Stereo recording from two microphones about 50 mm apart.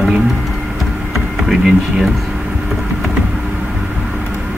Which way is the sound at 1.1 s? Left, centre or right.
Centre.